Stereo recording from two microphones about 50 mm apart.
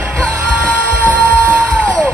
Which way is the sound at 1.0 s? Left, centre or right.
Left.